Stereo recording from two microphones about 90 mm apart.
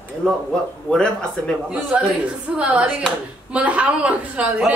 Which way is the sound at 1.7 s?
10° right (ahead or behind).